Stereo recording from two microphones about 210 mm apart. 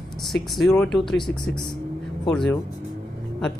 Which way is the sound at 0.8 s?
5° left (ahead or behind).